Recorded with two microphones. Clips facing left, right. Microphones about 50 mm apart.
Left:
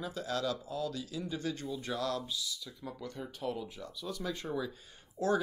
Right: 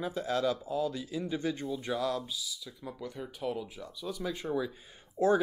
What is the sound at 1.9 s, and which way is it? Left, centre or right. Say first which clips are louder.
Speech: right 2 dB; centre.